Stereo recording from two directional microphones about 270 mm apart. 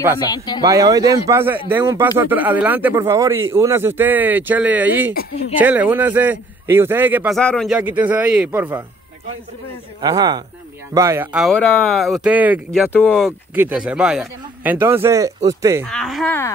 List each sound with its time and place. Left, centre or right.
0.6 s speech: centre
10.0 s speech: centre
15.8 s speech: centre